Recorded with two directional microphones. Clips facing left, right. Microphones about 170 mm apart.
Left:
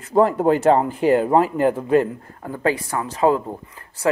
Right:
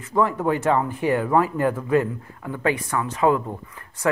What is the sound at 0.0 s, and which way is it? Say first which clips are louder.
Speech: left 5 dB; 35° left (ahead or behind).